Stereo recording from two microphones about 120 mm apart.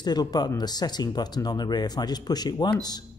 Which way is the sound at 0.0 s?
35° left (ahead or behind).